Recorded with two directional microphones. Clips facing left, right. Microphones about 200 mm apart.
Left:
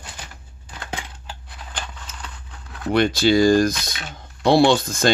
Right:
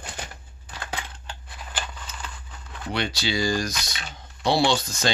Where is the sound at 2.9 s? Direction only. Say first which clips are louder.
Left 11 dB; 50° left (ahead or behind).